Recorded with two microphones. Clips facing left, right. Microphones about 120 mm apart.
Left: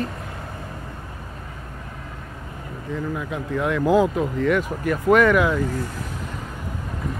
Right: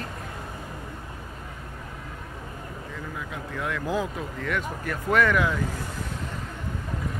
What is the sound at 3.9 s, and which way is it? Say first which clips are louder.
Speech: left 12 dB; 90° left.